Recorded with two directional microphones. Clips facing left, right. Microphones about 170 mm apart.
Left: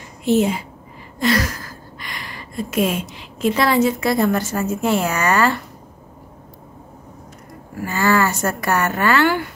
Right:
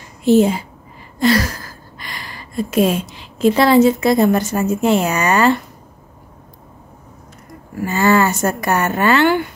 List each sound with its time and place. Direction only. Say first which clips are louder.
0.2 s a woman's voice: right 5 dB; 35° right (ahead or behind)
7.8 s speech: right 3 dB; 20° right (ahead or behind)